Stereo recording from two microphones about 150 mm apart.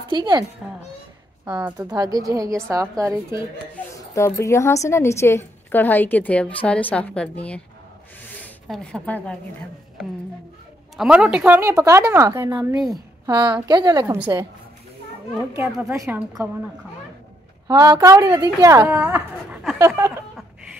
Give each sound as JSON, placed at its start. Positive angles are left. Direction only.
{"t": 0.1, "sound": "a woman's voice", "side_deg": -30}
{"t": 1.8, "sound": "a woman's voice", "side_deg": -25}
{"t": 4.1, "sound": "a woman's voice", "side_deg": 20}
{"t": 8.6, "sound": "a woman's voice", "side_deg": 5}
{"t": 11.0, "sound": "speech", "side_deg": -5}
{"t": 12.7, "sound": "a woman's voice", "side_deg": 0}
{"t": 13.3, "sound": "a woman's voice", "side_deg": -25}
{"t": 15.9, "sound": "a woman's voice", "side_deg": -20}
{"t": 17.6, "sound": "a woman's voice", "side_deg": -25}